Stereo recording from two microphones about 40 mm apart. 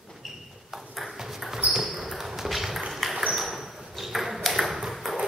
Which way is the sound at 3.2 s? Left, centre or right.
Centre.